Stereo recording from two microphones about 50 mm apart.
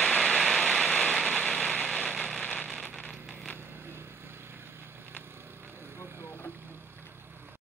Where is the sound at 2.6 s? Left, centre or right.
Centre.